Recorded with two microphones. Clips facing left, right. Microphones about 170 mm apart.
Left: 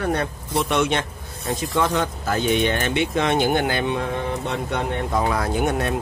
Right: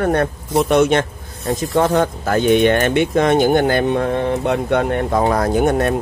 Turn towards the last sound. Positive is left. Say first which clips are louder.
# right 6 dB
turn(degrees=-45)  # may be behind; listen again after turning